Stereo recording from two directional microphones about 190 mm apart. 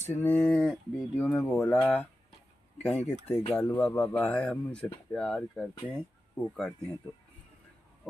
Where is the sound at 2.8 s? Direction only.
10° left (ahead or behind).